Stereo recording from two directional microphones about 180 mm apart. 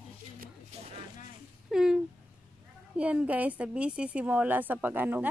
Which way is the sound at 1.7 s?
5° right (ahead or behind).